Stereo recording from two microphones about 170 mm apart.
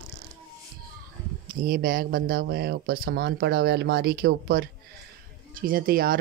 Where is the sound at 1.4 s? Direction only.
55° right (ahead or behind).